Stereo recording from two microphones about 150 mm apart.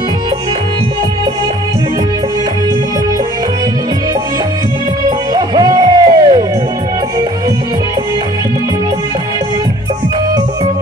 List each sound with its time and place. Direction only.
5.3 s music: 25° right (ahead or behind)